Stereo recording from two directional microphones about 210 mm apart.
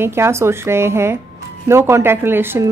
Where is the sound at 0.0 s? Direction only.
10° right (ahead or behind).